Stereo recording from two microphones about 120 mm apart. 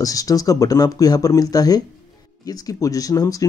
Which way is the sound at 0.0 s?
30° left (ahead or behind).